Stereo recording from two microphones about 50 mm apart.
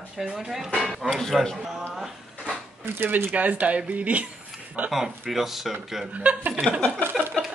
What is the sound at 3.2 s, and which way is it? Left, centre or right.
Speech, right.